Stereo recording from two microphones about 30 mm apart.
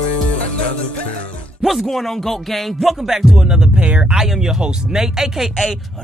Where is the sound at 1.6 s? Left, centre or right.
Centre.